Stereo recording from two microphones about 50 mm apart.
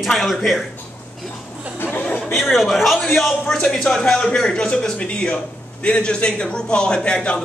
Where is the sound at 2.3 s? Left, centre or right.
Centre.